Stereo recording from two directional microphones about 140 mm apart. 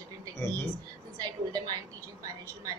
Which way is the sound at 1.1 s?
25° right (ahead or behind).